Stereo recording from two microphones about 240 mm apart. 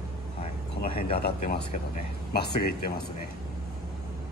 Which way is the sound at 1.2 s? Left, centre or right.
Left.